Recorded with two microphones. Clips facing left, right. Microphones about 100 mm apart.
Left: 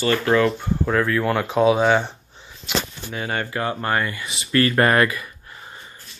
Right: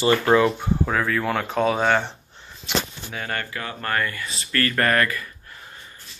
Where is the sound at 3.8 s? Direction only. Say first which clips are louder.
Left 2 dB; 20° left (ahead or behind).